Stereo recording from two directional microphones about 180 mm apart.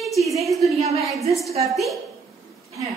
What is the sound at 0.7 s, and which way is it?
Speech, 35° right (ahead or behind).